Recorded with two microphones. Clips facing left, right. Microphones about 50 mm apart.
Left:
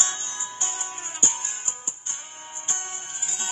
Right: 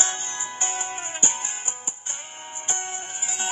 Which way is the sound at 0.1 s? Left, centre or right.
Right.